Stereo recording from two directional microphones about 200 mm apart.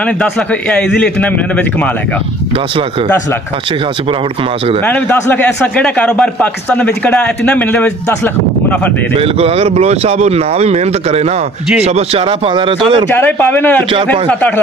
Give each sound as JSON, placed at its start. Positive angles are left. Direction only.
{"t": 0.0, "sound": "a man's voice", "side_deg": 5}
{"t": 4.8, "sound": "a man's voice", "side_deg": 10}
{"t": 9.1, "sound": "speech", "side_deg": -30}
{"t": 13.1, "sound": "a man's voice", "side_deg": 10}